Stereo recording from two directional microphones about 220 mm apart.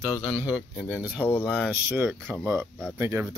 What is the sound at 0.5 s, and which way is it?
Speech, 5° right (ahead or behind).